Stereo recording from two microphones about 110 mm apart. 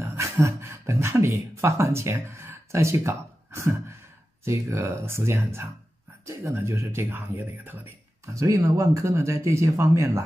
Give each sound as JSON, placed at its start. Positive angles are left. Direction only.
{"t": 0.0, "sound": "speech", "side_deg": -25}
{"t": 8.4, "sound": "speech", "side_deg": -30}